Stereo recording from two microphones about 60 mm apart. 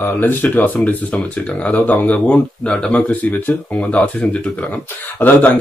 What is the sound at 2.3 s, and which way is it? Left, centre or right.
Speech, centre.